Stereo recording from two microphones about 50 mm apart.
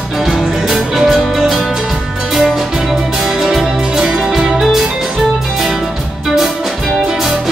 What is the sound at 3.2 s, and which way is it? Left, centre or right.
Music, centre.